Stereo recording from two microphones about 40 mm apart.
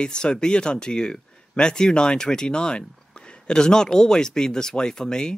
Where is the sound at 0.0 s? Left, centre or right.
Left.